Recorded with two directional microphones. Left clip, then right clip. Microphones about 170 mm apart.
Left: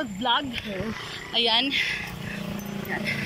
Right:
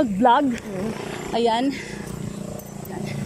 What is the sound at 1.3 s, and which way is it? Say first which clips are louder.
Speech: right 1 dB; 45° right (ahead or behind).